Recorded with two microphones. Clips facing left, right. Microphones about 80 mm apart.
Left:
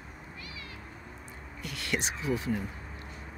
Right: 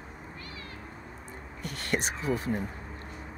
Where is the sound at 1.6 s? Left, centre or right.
Right.